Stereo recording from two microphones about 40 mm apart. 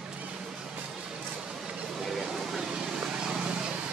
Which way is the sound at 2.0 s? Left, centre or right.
Centre.